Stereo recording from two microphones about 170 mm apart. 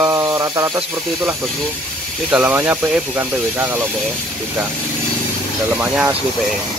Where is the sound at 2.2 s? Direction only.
10° right (ahead or behind).